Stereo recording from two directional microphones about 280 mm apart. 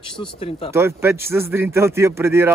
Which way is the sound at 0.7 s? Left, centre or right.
Centre.